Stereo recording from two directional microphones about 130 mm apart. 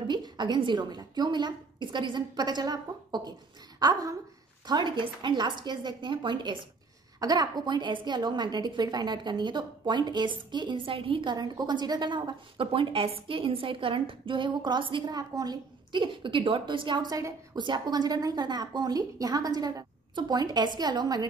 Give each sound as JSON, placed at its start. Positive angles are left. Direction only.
{"t": 0.0, "sound": "a woman's voice", "side_deg": -35}